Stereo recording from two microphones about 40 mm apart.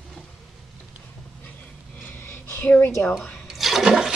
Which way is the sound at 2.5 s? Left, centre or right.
Left.